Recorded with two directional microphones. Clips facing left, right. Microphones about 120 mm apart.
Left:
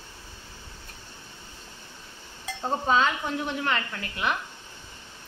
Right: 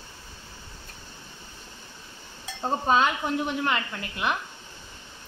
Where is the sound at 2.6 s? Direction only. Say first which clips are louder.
Right 1 dB; 15° right (ahead or behind).